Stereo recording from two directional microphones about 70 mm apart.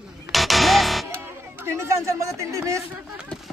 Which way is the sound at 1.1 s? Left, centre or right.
Right.